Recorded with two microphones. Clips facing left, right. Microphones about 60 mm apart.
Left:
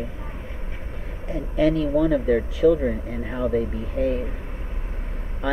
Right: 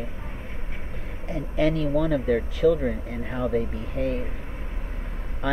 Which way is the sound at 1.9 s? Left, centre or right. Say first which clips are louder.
Left 3 dB; centre.